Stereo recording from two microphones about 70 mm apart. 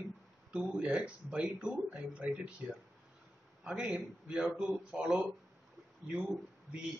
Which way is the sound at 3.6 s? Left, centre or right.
Centre.